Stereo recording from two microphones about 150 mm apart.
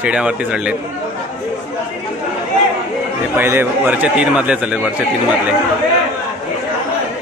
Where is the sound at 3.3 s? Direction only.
15° right (ahead or behind).